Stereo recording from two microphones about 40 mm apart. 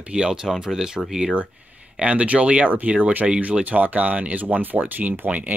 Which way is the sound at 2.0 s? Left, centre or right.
Right.